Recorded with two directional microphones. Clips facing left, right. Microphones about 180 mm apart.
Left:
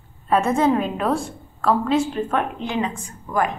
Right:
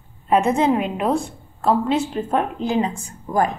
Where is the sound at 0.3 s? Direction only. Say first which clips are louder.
Right 1 dB; 20° right (ahead or behind).